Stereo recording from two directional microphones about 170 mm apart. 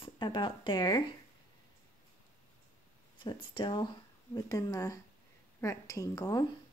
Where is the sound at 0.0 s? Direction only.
30° left (ahead or behind).